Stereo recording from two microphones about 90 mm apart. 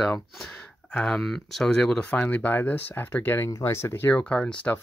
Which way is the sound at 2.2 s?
20° left (ahead or behind).